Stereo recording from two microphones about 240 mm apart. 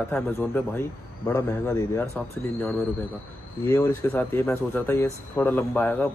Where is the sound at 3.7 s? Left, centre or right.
Centre.